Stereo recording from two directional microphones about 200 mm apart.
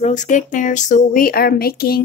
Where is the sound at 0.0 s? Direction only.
35° left (ahead or behind).